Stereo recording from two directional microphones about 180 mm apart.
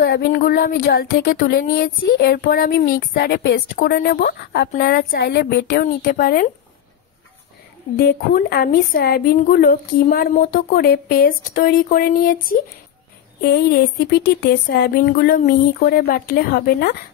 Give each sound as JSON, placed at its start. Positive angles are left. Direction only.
{"t": 0.0, "sound": "a woman's voice", "side_deg": 60}
{"t": 6.0, "sound": "a woman's voice", "side_deg": 50}
{"t": 7.9, "sound": "a woman's voice", "side_deg": 60}
{"t": 13.4, "sound": "a woman's voice", "side_deg": 60}